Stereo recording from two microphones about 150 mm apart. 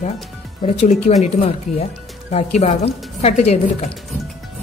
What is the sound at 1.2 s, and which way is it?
Speech, 45° left (ahead or behind).